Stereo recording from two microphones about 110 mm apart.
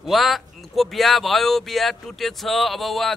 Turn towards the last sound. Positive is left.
turn(degrees=0)  # may be behind; listen again after turning